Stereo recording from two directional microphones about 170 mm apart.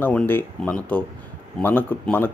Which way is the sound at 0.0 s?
10° left (ahead or behind).